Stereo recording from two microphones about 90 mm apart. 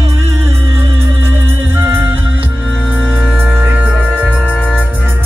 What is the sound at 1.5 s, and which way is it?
Music, 25° right (ahead or behind).